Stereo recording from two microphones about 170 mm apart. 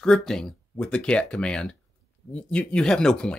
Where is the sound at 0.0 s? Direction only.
5° left (ahead or behind).